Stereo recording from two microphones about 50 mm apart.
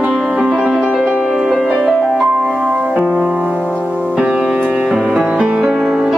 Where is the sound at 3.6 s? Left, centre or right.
Left.